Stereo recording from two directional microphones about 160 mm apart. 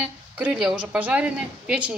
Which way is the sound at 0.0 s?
10° right (ahead or behind).